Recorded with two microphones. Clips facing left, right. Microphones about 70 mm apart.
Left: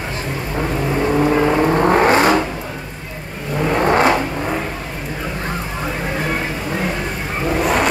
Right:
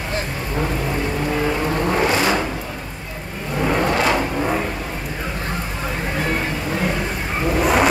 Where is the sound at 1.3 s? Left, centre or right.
Left.